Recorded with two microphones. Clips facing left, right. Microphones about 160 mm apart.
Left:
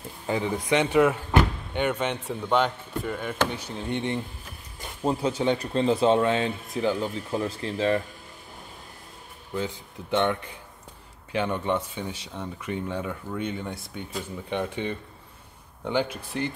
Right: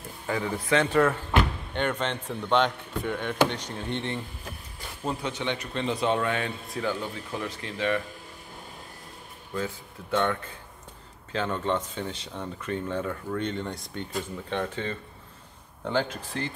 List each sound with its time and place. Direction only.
0.3 s speech: 20° left (ahead or behind)
5.0 s speech: 30° left (ahead or behind)
10.1 s a man's voice: 20° left (ahead or behind)